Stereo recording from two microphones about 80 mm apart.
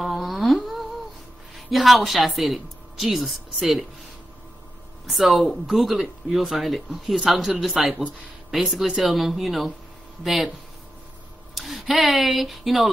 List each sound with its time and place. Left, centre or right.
0.0 s humming: centre
1.7 s speech: centre
5.0 s speech: centre
11.5 s speech: centre